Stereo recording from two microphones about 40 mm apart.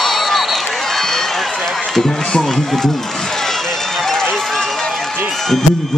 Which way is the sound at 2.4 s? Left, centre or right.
Centre.